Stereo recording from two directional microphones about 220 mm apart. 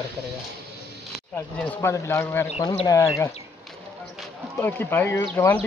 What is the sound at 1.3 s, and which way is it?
Speech, 10° left (ahead or behind).